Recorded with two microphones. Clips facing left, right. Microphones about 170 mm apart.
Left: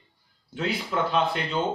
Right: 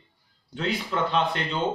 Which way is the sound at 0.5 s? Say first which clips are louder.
Even; 5° left (ahead or behind).